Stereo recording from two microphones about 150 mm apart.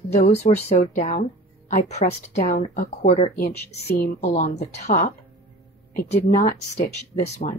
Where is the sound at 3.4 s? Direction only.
85° left.